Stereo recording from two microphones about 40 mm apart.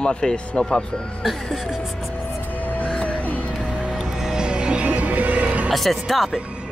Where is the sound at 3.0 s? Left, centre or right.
Left.